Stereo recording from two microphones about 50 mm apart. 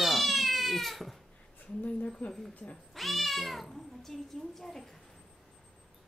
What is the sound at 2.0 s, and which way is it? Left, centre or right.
Speech, left.